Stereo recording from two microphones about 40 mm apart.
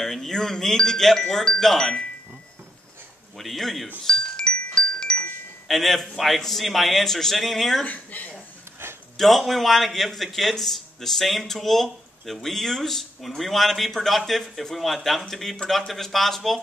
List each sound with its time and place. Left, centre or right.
0.0 s speech: centre
3.3 s a man's voice: centre
4.0 s chime: left
5.7 s a man's voice: centre
7.8 s speech: left
9.1 s a man's voice: centre